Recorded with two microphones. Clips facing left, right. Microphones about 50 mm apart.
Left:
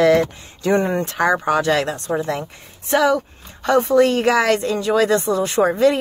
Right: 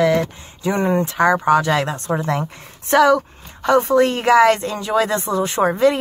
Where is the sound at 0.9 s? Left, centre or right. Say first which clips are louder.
Right 2 dB; right.